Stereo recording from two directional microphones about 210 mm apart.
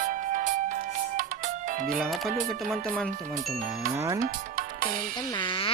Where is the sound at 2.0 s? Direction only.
Centre (ahead or behind).